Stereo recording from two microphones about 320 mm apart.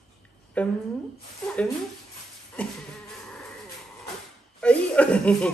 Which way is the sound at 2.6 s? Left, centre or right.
Centre.